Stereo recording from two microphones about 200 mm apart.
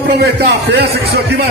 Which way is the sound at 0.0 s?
55° right (ahead or behind).